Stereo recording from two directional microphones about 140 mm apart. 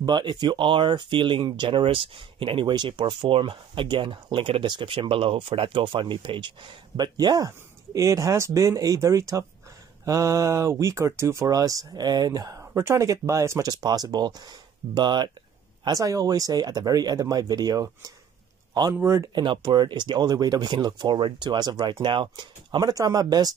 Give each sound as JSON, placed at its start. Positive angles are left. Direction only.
{"t": 0.0, "sound": "speech", "side_deg": -35}
{"t": 18.9, "sound": "speech", "side_deg": -20}
{"t": 19.3, "sound": "speech", "side_deg": -35}